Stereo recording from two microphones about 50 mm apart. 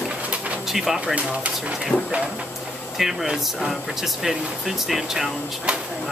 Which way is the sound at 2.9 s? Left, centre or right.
Centre.